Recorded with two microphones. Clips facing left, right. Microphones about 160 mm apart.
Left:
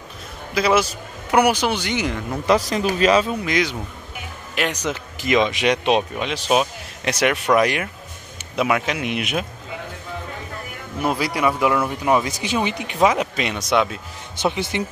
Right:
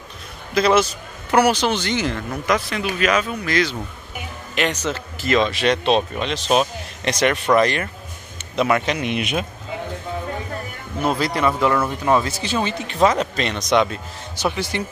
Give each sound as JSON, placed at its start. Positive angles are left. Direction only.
{"t": 0.6, "sound": "speech", "side_deg": 10}
{"t": 2.4, "sound": "a man's voice", "side_deg": 35}
{"t": 11.0, "sound": "speech", "side_deg": 10}
{"t": 14.3, "sound": "speech", "side_deg": 20}